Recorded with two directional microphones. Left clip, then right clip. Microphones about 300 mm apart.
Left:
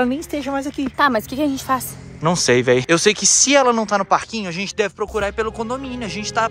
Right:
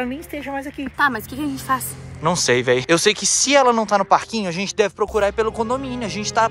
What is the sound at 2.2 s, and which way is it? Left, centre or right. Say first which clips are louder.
Speech: left 2 dB; centre.